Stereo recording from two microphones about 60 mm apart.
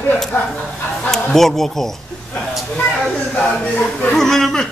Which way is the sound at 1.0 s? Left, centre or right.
Centre.